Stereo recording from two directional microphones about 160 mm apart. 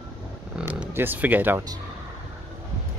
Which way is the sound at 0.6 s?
10° right (ahead or behind).